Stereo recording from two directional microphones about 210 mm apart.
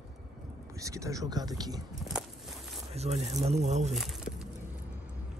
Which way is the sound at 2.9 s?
30° right (ahead or behind).